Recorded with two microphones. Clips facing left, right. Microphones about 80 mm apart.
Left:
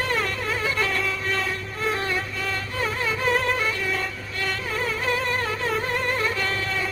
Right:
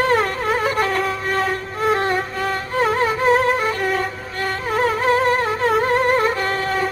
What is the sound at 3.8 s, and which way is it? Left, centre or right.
Violin, right.